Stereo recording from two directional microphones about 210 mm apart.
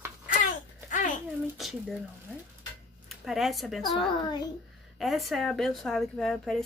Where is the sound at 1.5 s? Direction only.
Centre (ahead or behind).